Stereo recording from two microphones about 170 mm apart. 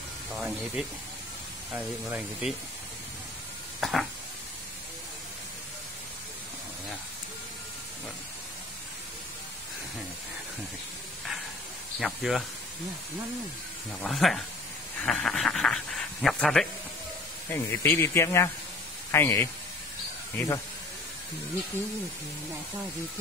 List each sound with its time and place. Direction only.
0.3 s speech: 5° right (ahead or behind)
3.8 s a sound: centre (ahead or behind)
12.0 s speech: centre (ahead or behind)
14.0 s speech: centre (ahead or behind)
15.0 s a sound: 5° left (ahead or behind)
17.5 s speech: 15° left (ahead or behind)